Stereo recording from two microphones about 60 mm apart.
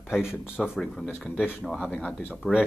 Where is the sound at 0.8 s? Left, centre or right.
Centre.